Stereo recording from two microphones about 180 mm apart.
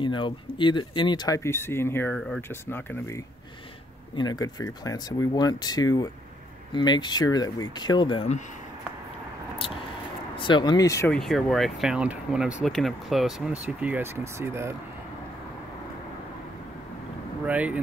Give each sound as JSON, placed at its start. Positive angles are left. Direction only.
{"t": 0.0, "sound": "speech", "side_deg": 25}
{"t": 2.1, "sound": "speech", "side_deg": 0}
{"t": 2.7, "sound": "speech", "side_deg": 10}
{"t": 4.1, "sound": "speech", "side_deg": 25}
{"t": 10.3, "sound": "speech", "side_deg": 25}
{"t": 11.1, "sound": "speech", "side_deg": 0}
{"t": 17.5, "sound": "speech", "side_deg": -10}